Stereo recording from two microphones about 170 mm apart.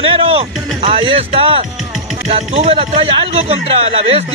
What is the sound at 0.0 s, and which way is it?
Speech, 35° right (ahead or behind).